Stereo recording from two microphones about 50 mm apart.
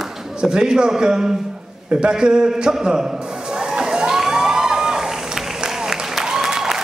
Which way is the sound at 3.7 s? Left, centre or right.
Centre.